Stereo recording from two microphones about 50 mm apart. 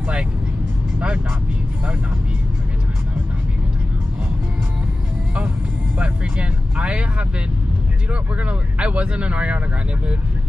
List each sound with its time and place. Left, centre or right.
0.9 s vehicle: right
5.9 s vehicle: right